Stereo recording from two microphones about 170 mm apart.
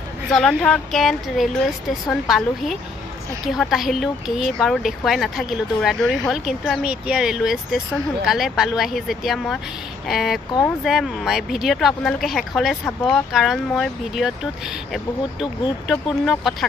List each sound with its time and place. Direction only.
0.3 s speech: centre (ahead or behind)